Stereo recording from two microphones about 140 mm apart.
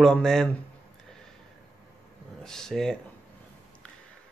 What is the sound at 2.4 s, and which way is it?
Speech, 5° left (ahead or behind).